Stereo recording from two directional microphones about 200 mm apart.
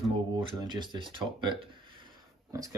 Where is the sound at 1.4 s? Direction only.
25° right (ahead or behind).